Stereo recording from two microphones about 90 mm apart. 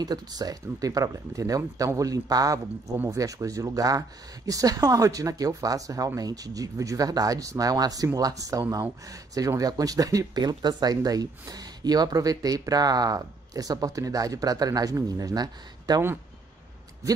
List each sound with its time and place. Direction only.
0.0 s speech: 45° right (ahead or behind)